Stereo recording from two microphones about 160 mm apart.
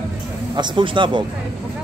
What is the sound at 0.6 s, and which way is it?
Speech, 30° right (ahead or behind).